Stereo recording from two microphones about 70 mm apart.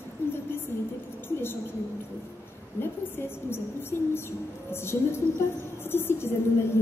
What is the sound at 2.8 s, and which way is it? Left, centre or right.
A woman's voice, left.